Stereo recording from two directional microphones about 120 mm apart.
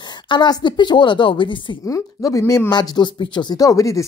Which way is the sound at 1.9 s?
30° left (ahead or behind).